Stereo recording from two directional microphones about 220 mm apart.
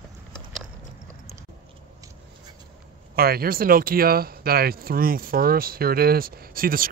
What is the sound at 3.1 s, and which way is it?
Speech, 45° right (ahead or behind).